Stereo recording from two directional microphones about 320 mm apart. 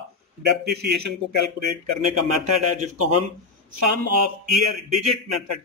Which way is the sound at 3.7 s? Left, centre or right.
Right.